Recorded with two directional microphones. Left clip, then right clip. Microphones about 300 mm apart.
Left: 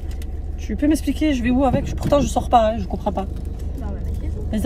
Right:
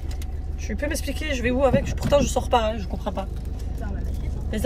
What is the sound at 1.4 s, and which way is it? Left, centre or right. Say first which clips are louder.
Speech: left 1 dB; centre.